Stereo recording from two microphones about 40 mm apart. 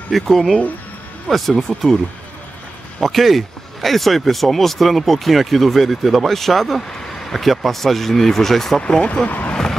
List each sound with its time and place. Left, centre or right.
0.1 s speech: centre
3.0 s speech: centre
9.0 s speech: left
9.3 s vehicle: left